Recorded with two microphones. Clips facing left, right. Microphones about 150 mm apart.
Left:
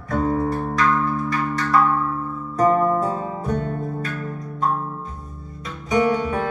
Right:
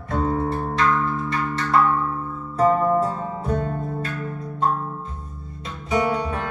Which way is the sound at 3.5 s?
30° right (ahead or behind).